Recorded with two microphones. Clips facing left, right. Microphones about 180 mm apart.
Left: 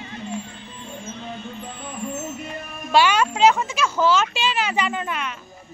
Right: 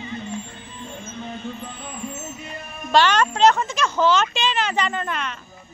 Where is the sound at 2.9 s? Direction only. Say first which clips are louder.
Even; 10° left (ahead or behind).